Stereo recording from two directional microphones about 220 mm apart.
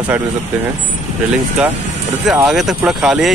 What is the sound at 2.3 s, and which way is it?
Speech, centre (ahead or behind).